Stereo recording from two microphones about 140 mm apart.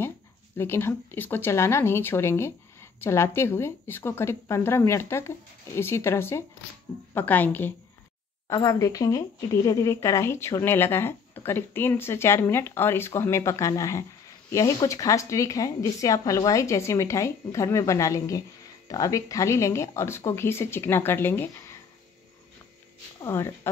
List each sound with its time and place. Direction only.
0.6 s speech: 15° left (ahead or behind)
23.2 s speech: 20° left (ahead or behind)